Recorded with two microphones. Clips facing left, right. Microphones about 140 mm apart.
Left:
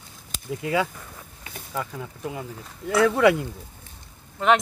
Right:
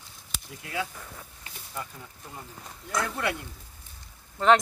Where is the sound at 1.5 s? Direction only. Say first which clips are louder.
Left 8 dB; 90° left.